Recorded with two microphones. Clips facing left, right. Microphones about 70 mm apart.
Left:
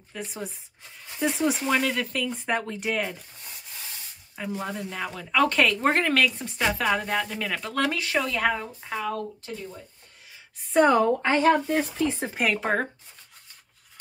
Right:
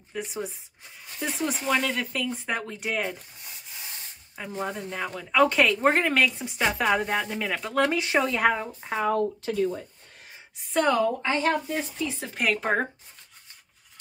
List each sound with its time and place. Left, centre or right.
0.1 s speech: centre
8.0 s speech: right
9.4 s speech: right
10.6 s speech: centre
11.0 s speech: left
12.0 s speech: left
12.4 s speech: centre